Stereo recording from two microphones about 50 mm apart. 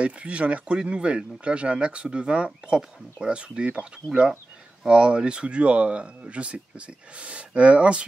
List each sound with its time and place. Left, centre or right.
0.0 s speech: right